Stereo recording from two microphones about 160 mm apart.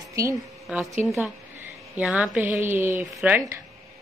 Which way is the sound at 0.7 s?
5° right (ahead or behind).